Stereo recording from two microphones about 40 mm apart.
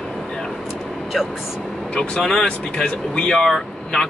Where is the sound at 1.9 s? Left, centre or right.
Left.